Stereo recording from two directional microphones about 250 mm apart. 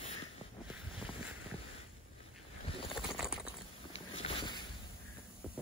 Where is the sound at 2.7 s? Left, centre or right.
Left.